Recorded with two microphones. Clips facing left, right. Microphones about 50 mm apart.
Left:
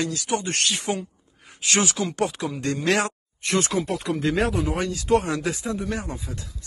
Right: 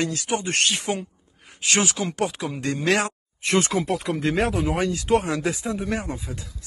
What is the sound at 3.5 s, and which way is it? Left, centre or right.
Speech, right.